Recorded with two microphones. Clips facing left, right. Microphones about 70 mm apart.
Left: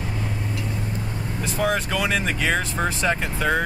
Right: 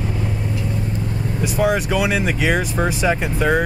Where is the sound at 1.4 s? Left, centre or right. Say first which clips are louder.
Right 5 dB; centre.